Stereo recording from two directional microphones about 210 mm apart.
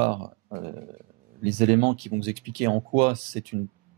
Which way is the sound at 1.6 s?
40° right (ahead or behind).